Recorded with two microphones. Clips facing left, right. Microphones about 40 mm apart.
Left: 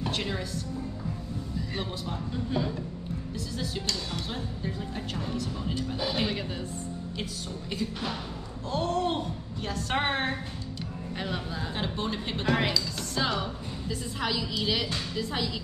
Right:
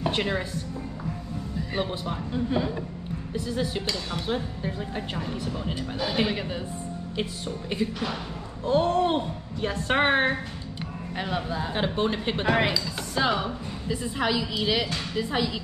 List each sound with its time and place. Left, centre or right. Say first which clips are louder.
0.0 s music: right 5 dB; right
1.8 s speech: right 9 dB; right
8.6 s speech: right 6 dB; right
11.1 s speech: right 5 dB; centre
11.7 s speech: right 6 dB; right